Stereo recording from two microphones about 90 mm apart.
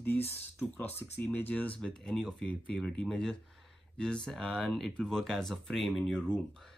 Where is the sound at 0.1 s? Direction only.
25° left (ahead or behind).